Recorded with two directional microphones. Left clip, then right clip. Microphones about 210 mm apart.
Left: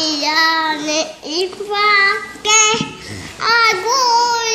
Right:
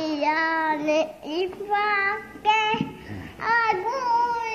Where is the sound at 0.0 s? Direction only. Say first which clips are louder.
Left 8 dB; 15° left (ahead or behind).